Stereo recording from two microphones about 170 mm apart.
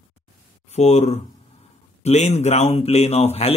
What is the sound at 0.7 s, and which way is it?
Speech, 40° left (ahead or behind).